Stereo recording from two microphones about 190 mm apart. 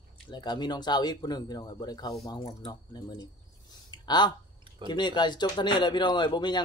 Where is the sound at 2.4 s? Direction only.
35° left (ahead or behind).